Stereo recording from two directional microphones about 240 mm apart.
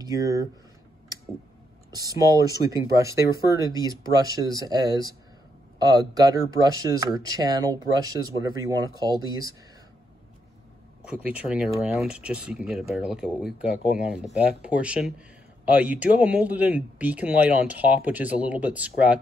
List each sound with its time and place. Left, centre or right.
0.0 s speech: centre
2.0 s speech: centre
11.2 s speech: centre